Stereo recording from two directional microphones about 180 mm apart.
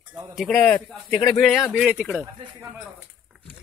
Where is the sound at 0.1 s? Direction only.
5° right (ahead or behind).